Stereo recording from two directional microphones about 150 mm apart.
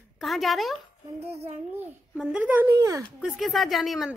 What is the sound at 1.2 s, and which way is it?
Child singing, 45° right (ahead or behind).